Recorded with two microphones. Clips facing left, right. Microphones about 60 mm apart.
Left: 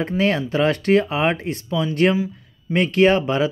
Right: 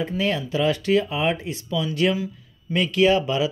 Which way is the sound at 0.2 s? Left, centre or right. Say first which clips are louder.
Left 4 dB; left.